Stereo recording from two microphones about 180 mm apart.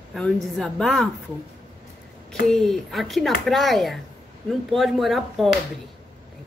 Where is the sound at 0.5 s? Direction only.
Centre (ahead or behind).